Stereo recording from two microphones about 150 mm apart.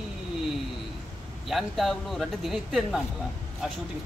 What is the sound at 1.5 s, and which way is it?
Speech, centre (ahead or behind).